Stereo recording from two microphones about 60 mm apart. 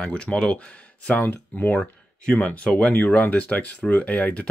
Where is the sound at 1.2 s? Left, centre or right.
Left.